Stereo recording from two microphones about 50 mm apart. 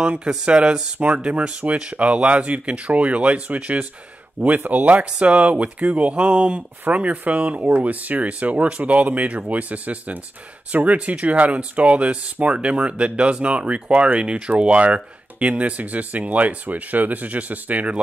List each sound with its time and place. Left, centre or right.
0.0 s speech: right